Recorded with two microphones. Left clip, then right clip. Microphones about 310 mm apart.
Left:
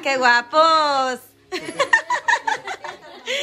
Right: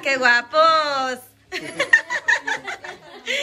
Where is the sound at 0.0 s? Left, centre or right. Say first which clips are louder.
Left 1 dB; centre.